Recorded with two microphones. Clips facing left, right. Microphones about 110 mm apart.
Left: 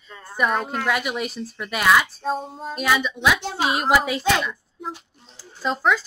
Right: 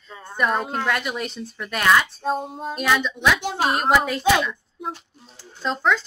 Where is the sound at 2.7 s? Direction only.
5° left (ahead or behind).